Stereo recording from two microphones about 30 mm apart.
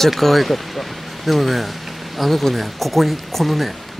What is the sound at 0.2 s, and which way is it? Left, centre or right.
Speech, centre.